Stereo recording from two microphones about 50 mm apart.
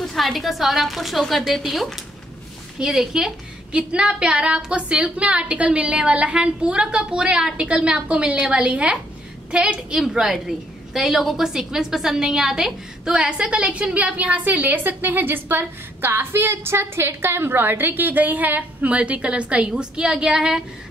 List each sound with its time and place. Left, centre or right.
0.0 s a woman's voice: centre
2.8 s a woman's voice: centre